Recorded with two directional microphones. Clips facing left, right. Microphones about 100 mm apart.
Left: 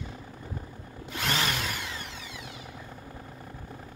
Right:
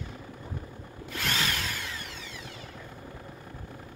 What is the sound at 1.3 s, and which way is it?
Power tool, 20° left (ahead or behind).